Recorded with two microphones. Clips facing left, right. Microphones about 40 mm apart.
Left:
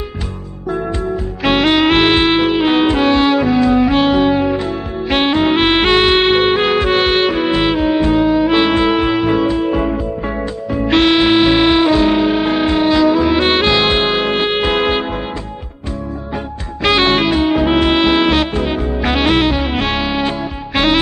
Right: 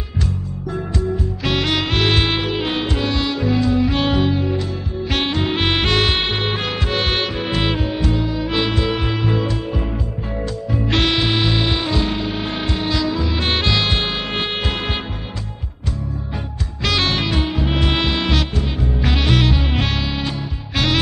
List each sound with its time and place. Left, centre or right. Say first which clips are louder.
1.4 s music: left 9 dB; left
4.0 s music: left 6 dB; centre
4.3 s music: left 6 dB; left; by 7.8 s centre
7.8 s music: left 9 dB; left
9.7 s music: left 9 dB; left
10.7 s music: left 7 dB; centre
16.8 s music: left 7 dB; left